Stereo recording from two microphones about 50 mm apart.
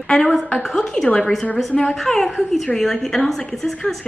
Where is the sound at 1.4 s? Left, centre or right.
Left.